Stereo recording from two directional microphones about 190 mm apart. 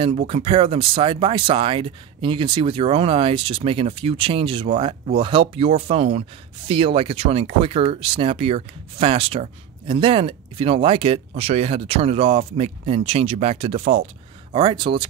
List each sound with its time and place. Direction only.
0.3 s speech: 30° right (ahead or behind)